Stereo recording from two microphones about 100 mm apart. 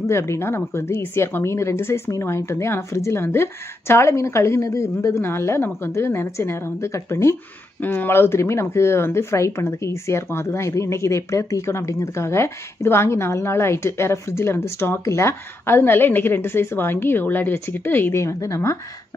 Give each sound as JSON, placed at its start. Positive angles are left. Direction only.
{"t": 0.0, "sound": "speech", "side_deg": 30}